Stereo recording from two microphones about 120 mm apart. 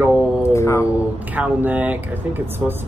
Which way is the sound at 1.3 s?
15° right (ahead or behind).